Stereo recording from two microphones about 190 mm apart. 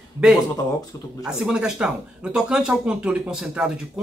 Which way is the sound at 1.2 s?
5° right (ahead or behind).